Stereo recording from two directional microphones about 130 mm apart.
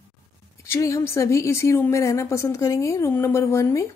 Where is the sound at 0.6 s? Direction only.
25° left (ahead or behind).